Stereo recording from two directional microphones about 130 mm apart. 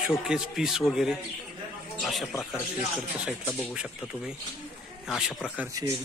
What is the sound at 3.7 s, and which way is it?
Speech, 5° right (ahead or behind).